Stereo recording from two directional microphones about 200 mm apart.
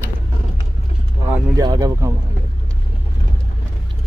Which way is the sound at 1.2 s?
15° right (ahead or behind).